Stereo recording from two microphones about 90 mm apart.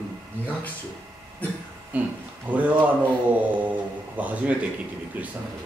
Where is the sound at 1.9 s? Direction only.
15° right (ahead or behind).